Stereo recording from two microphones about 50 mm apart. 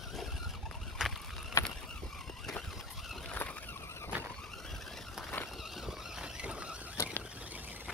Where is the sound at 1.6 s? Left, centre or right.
Left.